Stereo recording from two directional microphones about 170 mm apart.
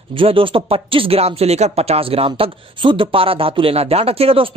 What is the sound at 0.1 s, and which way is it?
Speech, 30° right (ahead or behind).